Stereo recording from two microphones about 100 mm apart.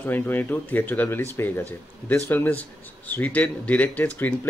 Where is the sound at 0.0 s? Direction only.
20° left (ahead or behind).